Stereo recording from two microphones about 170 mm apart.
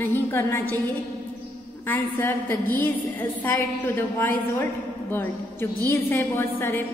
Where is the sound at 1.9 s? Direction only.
10° left (ahead or behind).